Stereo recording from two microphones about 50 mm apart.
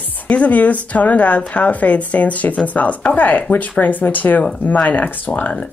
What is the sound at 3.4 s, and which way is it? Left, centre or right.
Speech, left.